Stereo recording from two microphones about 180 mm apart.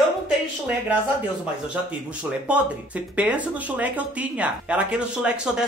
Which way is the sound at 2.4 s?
10° right (ahead or behind).